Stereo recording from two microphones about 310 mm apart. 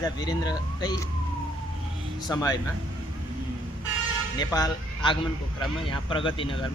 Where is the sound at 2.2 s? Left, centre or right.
Centre.